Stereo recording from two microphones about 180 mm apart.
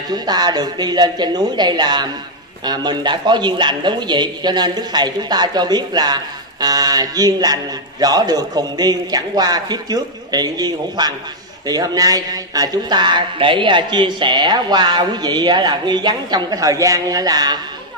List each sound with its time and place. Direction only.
0.1 s speech: 25° right (ahead or behind)